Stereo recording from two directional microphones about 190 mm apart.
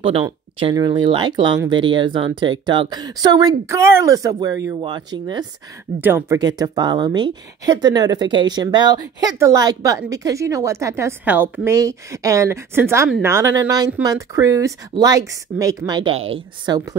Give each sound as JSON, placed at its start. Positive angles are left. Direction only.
{"t": 0.0, "sound": "speech", "side_deg": -30}
{"t": 5.9, "sound": "speech", "side_deg": -10}